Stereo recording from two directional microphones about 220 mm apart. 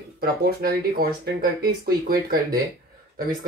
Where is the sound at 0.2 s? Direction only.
45° right (ahead or behind).